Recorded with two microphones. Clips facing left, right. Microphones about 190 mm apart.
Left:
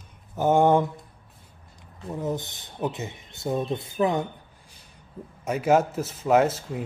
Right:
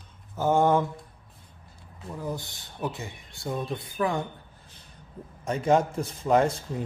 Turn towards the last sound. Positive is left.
turn(degrees=5)  # may be behind; listen again after turning